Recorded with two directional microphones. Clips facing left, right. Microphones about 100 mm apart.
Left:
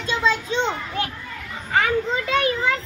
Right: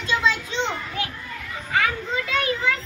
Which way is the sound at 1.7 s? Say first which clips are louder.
Left 3 dB; 35° left (ahead or behind).